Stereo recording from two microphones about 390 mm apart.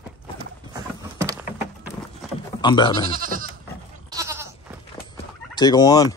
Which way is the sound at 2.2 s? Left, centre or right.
Centre.